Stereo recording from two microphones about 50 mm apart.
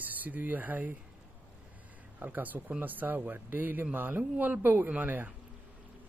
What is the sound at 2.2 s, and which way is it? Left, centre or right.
A man's voice, right.